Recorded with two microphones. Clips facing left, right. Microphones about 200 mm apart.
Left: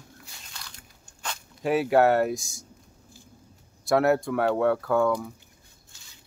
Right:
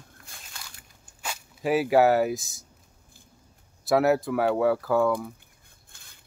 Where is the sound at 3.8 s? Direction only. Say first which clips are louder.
Even; centre (ahead or behind).